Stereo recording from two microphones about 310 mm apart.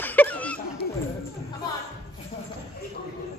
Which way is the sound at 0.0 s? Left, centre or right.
Centre.